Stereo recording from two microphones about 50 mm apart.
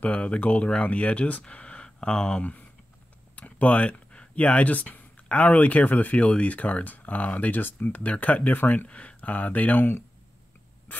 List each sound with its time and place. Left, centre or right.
0.0 s speech: left
3.3 s speech: left
10.9 s a sound: left